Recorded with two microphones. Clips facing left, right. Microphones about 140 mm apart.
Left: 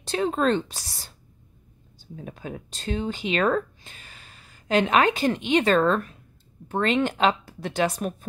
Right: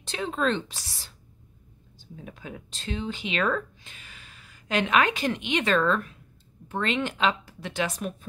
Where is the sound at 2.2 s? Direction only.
45° left (ahead or behind).